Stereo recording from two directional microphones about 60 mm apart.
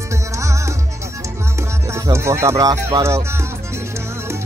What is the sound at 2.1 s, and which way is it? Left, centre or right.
Speech, right.